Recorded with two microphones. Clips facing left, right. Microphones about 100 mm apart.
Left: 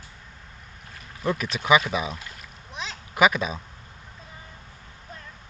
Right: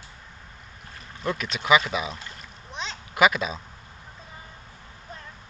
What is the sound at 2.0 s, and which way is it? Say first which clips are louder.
Splash: left 1 dB; 5° left (ahead or behind).